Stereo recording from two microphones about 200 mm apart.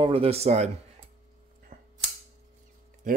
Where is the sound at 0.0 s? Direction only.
30° right (ahead or behind).